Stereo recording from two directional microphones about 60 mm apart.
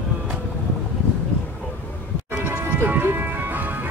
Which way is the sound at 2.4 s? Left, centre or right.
Right.